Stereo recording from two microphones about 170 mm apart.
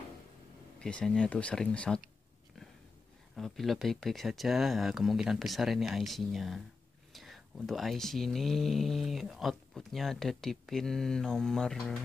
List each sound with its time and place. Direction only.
0.7 s speech: 5° left (ahead or behind)
3.3 s speech: centre (ahead or behind)